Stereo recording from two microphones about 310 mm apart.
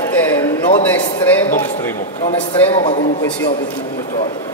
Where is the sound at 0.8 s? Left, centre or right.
Centre.